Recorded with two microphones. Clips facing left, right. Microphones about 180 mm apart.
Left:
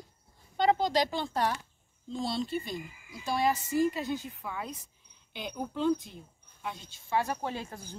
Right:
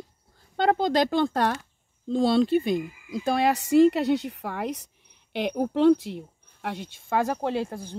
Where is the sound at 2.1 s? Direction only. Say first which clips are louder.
Right 12 dB; 70° right (ahead or behind); by 7.4 s 45° right (ahead or behind).